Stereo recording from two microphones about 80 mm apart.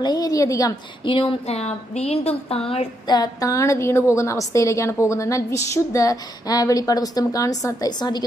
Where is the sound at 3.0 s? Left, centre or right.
Left.